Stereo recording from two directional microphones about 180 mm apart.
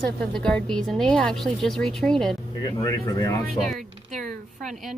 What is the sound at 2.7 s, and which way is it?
Speech, 20° left (ahead or behind).